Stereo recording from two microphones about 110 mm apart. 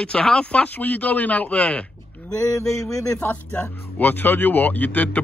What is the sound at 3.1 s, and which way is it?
Speech, 15° left (ahead or behind).